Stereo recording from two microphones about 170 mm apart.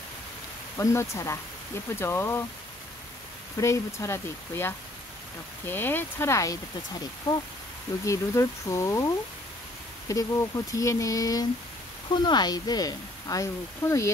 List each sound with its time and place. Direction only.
0.7 s speech: 15° left (ahead or behind)
3.5 s speech: 20° left (ahead or behind)
8.0 s speech: 20° left (ahead or behind)